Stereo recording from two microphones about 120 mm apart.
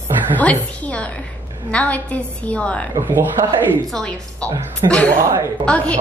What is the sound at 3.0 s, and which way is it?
Speech, 15° right (ahead or behind).